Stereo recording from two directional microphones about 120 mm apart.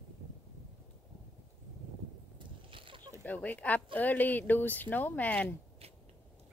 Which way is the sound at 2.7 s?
45° right (ahead or behind).